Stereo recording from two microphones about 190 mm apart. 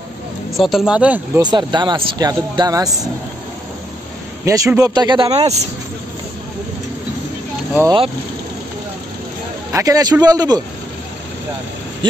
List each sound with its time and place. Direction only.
0.6 s speech: centre (ahead or behind)
1.4 s speech: 20° right (ahead or behind)
4.5 s speech: 15° right (ahead or behind); by 5.7 s 35° right (ahead or behind)
9.7 s speech: 15° right (ahead or behind)
12.0 s speech: 25° right (ahead or behind)